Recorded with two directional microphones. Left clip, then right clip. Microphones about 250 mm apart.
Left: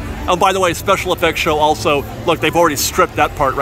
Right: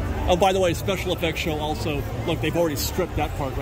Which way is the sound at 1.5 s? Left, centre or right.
Left.